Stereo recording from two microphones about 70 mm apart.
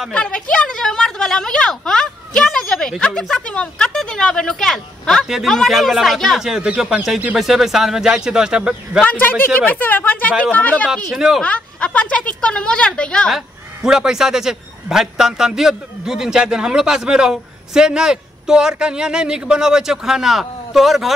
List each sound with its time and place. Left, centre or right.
0.1 s a woman's voice: centre
5.2 s a man's voice: centre
9.0 s speech: left
11.1 s speech: centre
11.4 s speech: centre
13.8 s a man's voice: centre